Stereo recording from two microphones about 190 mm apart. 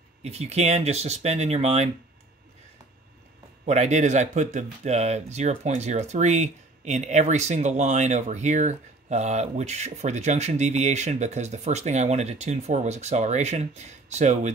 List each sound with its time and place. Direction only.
0.2 s speech: 35° right (ahead or behind)
3.6 s speech: 35° right (ahead or behind)